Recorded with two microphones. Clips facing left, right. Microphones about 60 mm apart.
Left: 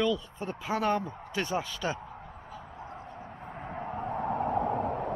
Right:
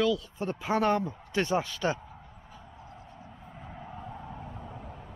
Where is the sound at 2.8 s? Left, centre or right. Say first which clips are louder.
Left 6 dB; left.